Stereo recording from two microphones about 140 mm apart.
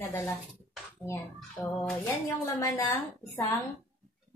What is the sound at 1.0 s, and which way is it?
Speech, 25° left (ahead or behind).